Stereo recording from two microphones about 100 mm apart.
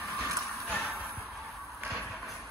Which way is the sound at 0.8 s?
20° right (ahead or behind).